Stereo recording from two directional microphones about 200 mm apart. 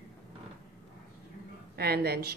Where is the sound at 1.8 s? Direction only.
50° right (ahead or behind).